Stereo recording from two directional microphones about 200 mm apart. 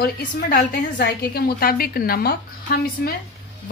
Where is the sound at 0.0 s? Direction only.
50° left (ahead or behind).